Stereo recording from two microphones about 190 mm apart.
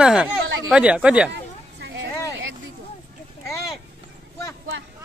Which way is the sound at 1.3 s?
65° right (ahead or behind).